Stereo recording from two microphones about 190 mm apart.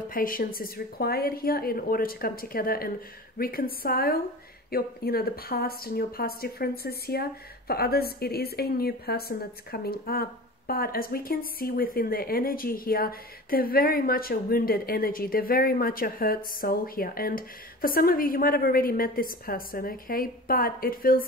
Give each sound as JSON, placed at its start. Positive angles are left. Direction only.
{"t": 0.1, "sound": "a woman's voice", "side_deg": 50}